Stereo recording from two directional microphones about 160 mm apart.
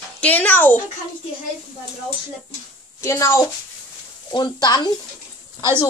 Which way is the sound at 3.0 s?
15° left (ahead or behind).